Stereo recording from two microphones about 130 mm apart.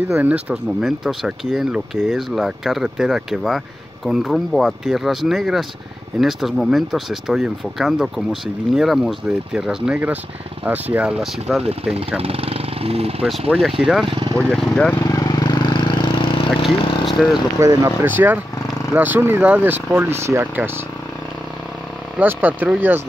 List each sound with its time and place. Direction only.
0.1 s speech: 10° right (ahead or behind)
11.9 s speech: 50° right (ahead or behind)
13.5 s speech: centre (ahead or behind)
14.0 s speech: 45° right (ahead or behind)
14.5 s speech: 5° left (ahead or behind)
15.0 s a sound: 30° left (ahead or behind); by 16.6 s 45° left (ahead or behind)
17.0 s vehicle: centre (ahead or behind)
17.6 s speech: 20° right (ahead or behind)
22.2 s speech: 15° right (ahead or behind)